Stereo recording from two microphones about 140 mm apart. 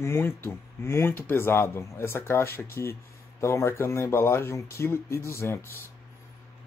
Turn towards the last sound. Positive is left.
turn(degrees=15)  # may be behind; listen again after turning